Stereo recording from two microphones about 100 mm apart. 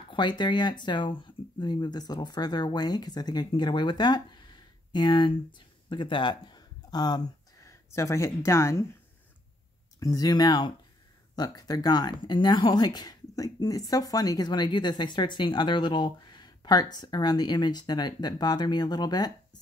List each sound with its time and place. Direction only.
0.1 s speech: 50° left (ahead or behind)
7.6 s speech: 30° left (ahead or behind)
9.9 s speech: 35° left (ahead or behind)